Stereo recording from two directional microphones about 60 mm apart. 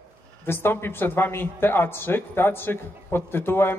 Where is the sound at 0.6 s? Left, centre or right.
Left.